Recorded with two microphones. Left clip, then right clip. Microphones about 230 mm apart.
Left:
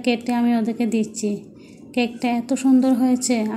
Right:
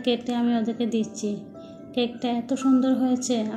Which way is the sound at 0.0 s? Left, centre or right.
Left.